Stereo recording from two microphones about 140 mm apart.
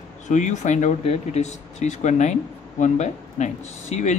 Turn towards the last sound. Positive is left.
turn(degrees=55)  # may be behind; listen again after turning